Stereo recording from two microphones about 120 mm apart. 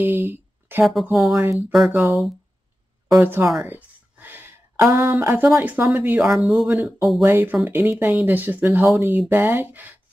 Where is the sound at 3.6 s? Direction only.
15° right (ahead or behind); by 7.2 s centre (ahead or behind).